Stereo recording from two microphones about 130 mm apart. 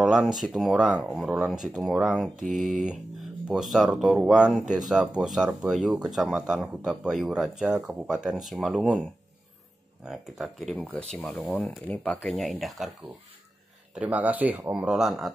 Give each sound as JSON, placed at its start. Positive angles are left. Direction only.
{"t": 0.0, "sound": "speech", "side_deg": -5}
{"t": 2.3, "sound": "speech", "side_deg": -80}
{"t": 3.4, "sound": "speech", "side_deg": 0}
{"t": 10.0, "sound": "speech", "side_deg": -5}
{"t": 13.9, "sound": "speech", "side_deg": -10}